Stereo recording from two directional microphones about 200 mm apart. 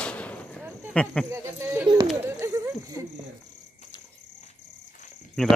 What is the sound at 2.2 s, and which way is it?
Snake, 15° right (ahead or behind).